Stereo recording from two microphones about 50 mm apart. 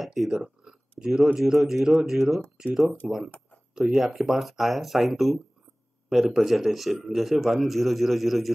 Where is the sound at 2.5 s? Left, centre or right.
Centre.